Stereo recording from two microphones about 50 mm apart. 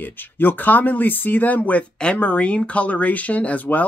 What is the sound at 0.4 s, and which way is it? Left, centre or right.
Speech, left.